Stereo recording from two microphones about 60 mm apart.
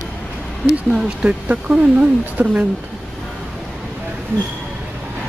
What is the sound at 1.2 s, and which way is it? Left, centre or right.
Speech, centre.